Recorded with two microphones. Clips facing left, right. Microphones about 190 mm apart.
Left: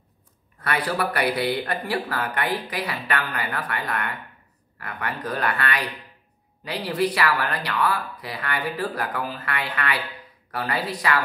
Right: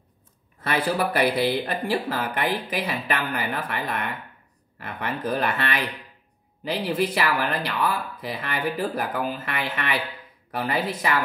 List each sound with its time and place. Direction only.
0.7 s speech: 25° right (ahead or behind)